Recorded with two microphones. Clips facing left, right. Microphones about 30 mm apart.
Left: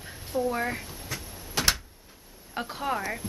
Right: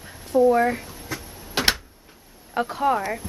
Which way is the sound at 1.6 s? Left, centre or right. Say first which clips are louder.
Right 4 dB; right.